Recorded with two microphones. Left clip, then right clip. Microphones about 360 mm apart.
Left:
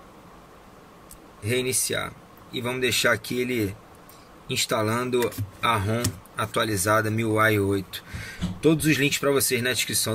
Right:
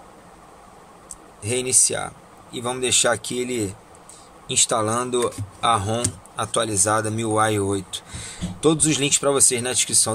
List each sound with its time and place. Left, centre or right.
1.4 s speech: centre